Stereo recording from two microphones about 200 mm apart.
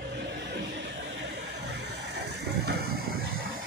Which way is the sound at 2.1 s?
55° right (ahead or behind).